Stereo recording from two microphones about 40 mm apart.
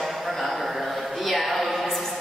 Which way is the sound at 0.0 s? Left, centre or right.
Centre.